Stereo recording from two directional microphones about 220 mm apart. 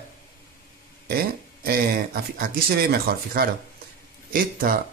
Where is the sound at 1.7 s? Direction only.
45° right (ahead or behind).